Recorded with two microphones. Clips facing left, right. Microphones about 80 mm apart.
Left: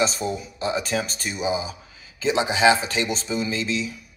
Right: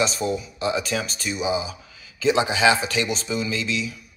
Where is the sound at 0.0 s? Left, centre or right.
Left.